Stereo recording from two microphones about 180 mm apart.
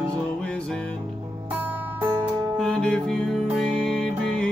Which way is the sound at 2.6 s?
5° left (ahead or behind).